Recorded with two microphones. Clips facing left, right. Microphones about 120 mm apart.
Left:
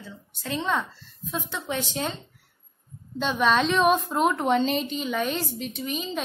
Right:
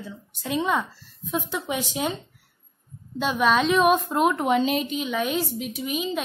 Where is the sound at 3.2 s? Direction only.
Centre (ahead or behind).